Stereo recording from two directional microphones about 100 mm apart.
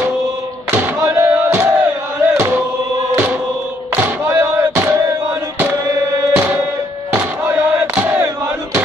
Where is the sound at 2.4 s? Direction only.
25° right (ahead or behind).